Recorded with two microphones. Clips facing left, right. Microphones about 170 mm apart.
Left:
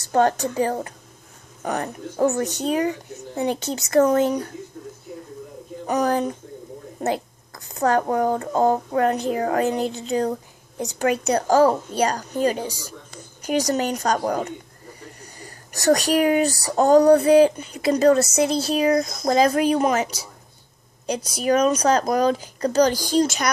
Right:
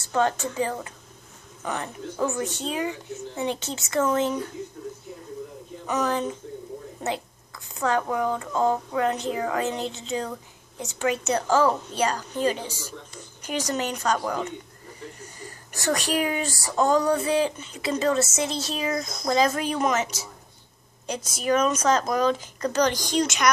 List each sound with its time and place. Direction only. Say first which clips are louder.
0.1 s speech: left 5 dB; 45° left (ahead or behind)
5.9 s speech: left 4 dB; 40° left (ahead or behind)